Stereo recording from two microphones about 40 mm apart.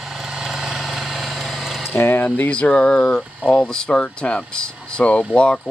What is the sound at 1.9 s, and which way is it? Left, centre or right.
Speech, left.